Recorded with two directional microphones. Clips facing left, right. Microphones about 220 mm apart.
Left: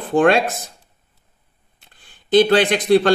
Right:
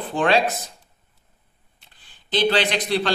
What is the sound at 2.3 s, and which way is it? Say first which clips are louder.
Speech: left 7 dB; 50° left (ahead or behind).